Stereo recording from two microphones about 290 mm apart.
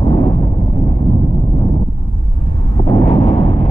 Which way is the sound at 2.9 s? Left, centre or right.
Left.